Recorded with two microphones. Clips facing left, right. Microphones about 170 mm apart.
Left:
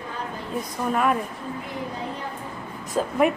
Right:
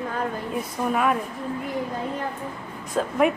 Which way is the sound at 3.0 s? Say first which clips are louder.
Even; 5° left (ahead or behind).